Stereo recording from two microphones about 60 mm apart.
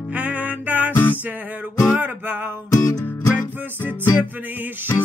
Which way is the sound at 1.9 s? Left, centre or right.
Right.